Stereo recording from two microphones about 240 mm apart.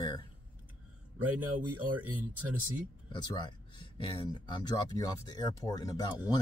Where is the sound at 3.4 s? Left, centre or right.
Centre.